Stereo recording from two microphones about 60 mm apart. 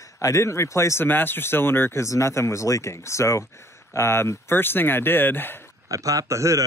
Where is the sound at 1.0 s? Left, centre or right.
Left.